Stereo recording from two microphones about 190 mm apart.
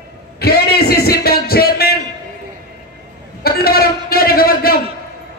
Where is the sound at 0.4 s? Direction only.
55° left (ahead or behind).